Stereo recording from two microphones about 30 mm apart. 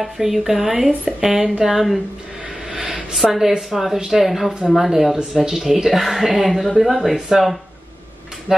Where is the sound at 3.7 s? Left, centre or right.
Centre.